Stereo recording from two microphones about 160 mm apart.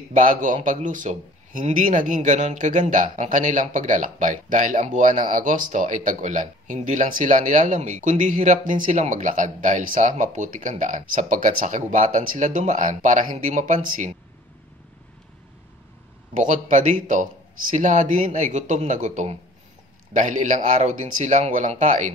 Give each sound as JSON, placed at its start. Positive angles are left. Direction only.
{"t": 0.1, "sound": "a man's voice", "side_deg": -55}
{"t": 16.3, "sound": "a man's voice", "side_deg": -50}